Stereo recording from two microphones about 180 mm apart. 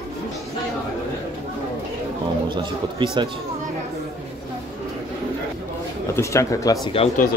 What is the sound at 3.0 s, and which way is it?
Speech, 25° right (ahead or behind).